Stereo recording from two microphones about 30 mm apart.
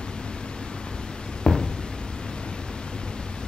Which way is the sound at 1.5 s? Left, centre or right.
Left.